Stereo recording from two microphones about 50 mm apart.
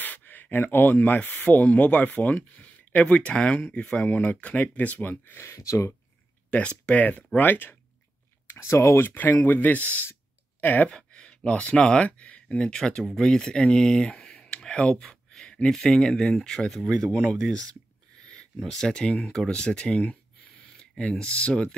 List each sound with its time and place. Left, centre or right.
0.0 s speech: left
5.4 s speech: left
6.9 s speech: left
7.3 s speech: left
8.5 s speech: left
9.1 s speech: left
10.9 s a sound: centre
11.8 s speech: left
14.4 s a sound: centre
15.7 s speech: centre
18.6 s speech: centre
20.0 s a sound: left
21.0 s speech: left